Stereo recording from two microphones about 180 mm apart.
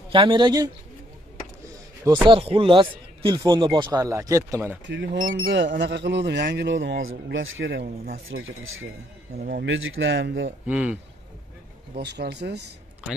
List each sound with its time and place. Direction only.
0.1 s speech: 25° right (ahead or behind)
2.2 s speech: 30° right (ahead or behind)
4.8 s speech: 85° right
5.7 s a man's voice: 55° right (ahead or behind)
8.3 s speech: 90° right
9.4 s speech: 55° right (ahead or behind)
9.7 s speech: 90° right
10.7 s speech: 5° right (ahead or behind)
12.0 s a man's voice: 70° right (ahead or behind)